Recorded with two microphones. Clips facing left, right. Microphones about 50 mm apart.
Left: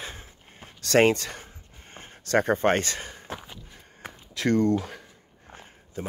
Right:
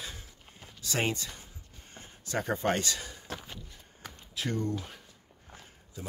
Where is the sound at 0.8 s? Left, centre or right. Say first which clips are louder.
Left 12 dB; left.